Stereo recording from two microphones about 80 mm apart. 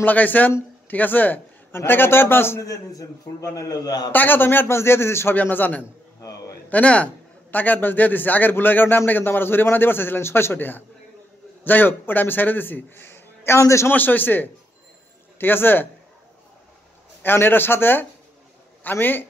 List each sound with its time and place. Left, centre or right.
0.0 s a man's voice: left
2.6 s a man's voice: left
4.1 s a man's voice: left
13.9 s a man's voice: left
17.2 s a man's voice: left